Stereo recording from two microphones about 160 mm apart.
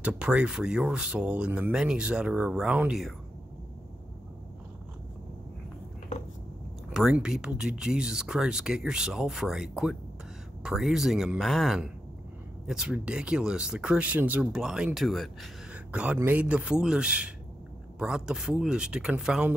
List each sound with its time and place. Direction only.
0.0 s speech: 5° right (ahead or behind)
6.9 s speech: 5° right (ahead or behind)